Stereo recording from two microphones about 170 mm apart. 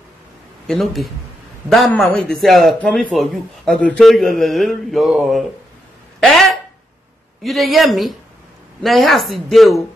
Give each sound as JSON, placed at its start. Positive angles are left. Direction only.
{"t": 0.7, "sound": "a man's voice", "side_deg": 0}
{"t": 6.1, "sound": "a sound", "side_deg": 0}
{"t": 7.4, "sound": "a man's voice", "side_deg": 0}